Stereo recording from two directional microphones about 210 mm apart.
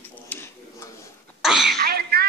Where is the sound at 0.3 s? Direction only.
10° left (ahead or behind).